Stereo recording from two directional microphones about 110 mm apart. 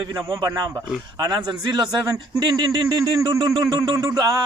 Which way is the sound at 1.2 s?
45° right (ahead or behind).